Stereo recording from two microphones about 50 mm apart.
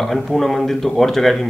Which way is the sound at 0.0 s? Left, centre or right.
Centre.